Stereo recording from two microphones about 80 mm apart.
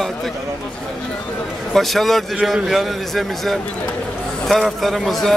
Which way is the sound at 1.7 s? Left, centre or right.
Centre.